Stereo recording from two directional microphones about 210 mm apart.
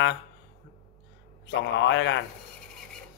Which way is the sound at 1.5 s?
60° left (ahead or behind).